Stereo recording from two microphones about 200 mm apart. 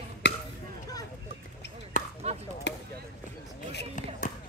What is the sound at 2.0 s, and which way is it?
Chop, 40° left (ahead or behind).